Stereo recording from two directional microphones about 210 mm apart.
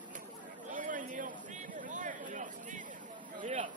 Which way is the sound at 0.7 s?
40° right (ahead or behind).